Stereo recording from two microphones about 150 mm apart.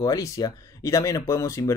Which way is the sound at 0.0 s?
25° left (ahead or behind).